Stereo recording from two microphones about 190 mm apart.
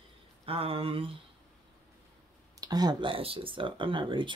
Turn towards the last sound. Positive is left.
turn(degrees=-25)  # may be behind; listen again after turning